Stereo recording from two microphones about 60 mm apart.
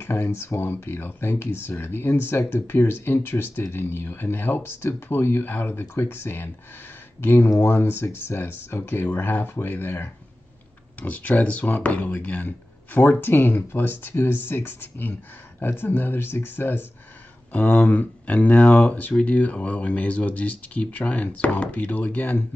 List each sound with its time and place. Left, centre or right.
0.0 s speech: left
17.5 s speech: left